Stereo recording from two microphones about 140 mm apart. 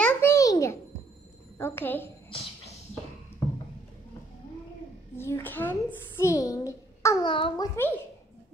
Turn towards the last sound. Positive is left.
turn(degrees=35)  # may be behind; listen again after turning